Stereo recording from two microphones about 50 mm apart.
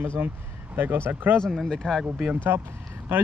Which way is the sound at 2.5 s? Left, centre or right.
Right.